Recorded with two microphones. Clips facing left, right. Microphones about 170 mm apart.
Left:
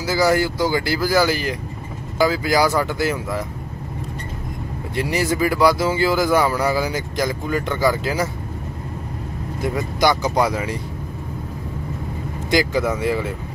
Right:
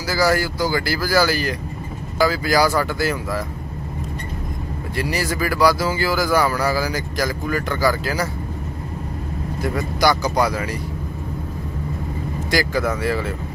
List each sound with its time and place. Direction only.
0.0 s speech: 20° left (ahead or behind)
4.9 s speech: 20° left (ahead or behind)
9.6 s speech: 20° left (ahead or behind)
12.4 s speech: 20° left (ahead or behind)